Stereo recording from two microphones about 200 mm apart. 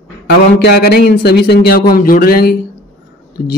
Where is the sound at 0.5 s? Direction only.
50° left (ahead or behind).